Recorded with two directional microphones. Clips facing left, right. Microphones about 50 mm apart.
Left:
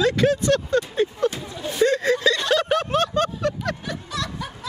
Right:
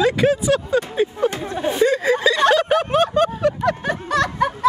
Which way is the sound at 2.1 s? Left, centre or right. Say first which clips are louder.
Right 5 dB; centre.